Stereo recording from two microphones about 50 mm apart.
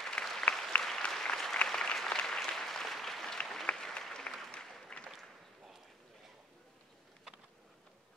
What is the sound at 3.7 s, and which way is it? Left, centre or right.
Applause, left.